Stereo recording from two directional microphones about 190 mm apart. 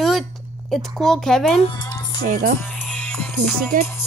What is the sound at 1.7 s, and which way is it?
Music, 20° left (ahead or behind).